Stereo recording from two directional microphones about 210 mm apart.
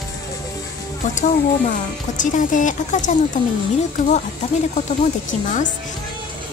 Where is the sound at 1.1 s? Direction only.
35° left (ahead or behind).